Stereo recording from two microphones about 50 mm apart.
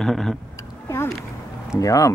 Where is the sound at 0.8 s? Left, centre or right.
Left.